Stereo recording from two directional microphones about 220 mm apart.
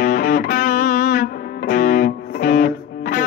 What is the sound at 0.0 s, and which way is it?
Music, 40° left (ahead or behind).